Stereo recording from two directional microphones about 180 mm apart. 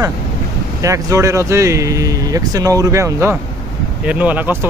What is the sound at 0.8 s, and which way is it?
Speech, 15° right (ahead or behind).